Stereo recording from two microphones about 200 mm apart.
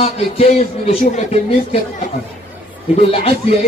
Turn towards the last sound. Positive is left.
turn(degrees=30)  # may be behind; listen again after turning